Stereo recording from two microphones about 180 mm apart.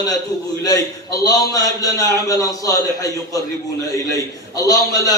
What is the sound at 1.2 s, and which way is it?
A man's voice, 20° left (ahead or behind).